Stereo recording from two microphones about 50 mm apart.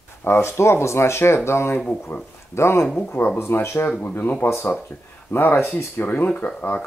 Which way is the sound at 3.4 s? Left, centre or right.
Left.